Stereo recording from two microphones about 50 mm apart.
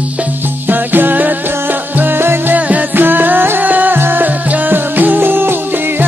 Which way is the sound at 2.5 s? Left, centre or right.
Right.